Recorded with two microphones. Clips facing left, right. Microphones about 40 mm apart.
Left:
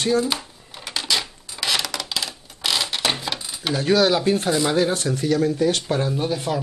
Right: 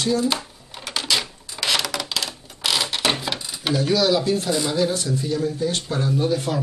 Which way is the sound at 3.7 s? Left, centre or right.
Left.